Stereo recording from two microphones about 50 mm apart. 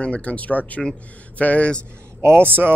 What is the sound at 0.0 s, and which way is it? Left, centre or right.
Speech, left.